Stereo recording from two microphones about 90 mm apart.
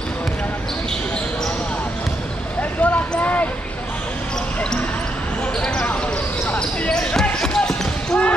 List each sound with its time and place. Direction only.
2.8 s basketball bounce: 20° left (ahead or behind)
5.6 s basketball bounce: 15° left (ahead or behind)